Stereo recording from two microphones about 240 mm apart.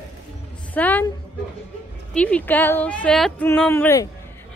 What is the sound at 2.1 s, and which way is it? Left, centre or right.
A child's voice, centre.